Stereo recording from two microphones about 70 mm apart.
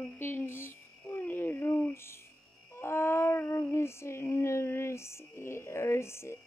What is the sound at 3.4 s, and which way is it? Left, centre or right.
Female singing, left.